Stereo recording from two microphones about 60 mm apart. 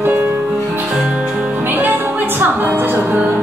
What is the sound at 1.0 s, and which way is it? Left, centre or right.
Music, centre.